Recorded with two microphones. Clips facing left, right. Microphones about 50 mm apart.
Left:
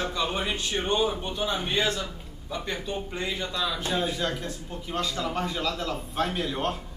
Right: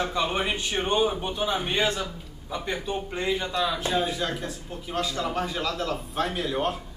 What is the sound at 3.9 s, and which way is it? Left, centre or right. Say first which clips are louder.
A man's voice: right 1 dB; centre.